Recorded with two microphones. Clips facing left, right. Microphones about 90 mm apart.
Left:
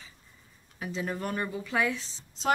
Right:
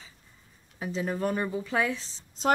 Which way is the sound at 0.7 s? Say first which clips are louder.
Right 3 dB; 25° right (ahead or behind).